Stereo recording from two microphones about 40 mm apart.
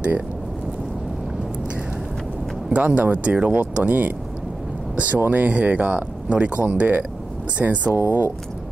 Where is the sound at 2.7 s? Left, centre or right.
Right.